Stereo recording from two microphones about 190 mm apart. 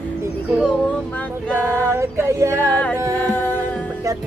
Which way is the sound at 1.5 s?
15° right (ahead or behind).